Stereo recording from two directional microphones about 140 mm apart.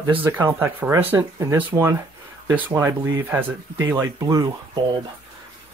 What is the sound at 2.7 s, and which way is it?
Speech, 20° right (ahead or behind).